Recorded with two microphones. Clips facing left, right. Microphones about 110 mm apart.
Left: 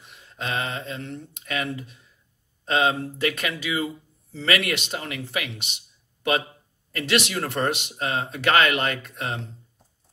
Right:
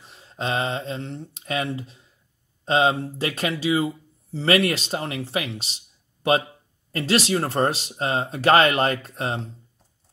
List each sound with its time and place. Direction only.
0.0 s speech: 35° right (ahead or behind)